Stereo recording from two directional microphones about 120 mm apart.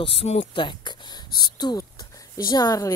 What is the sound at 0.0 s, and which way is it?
Speech, 55° left (ahead or behind).